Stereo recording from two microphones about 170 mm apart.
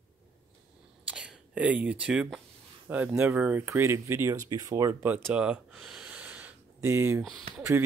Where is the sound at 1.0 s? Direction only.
5° right (ahead or behind).